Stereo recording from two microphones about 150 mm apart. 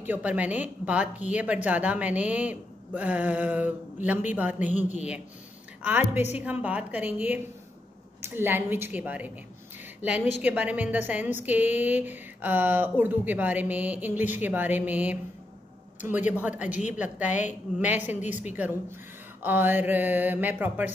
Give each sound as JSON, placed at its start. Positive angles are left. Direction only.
{"t": 0.0, "sound": "a woman's voice", "side_deg": -10}
{"t": 4.6, "sound": "a woman's voice", "side_deg": 55}
{"t": 5.8, "sound": "a woman's voice", "side_deg": -10}